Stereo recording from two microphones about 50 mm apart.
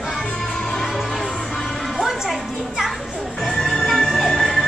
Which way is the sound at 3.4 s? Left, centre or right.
Centre.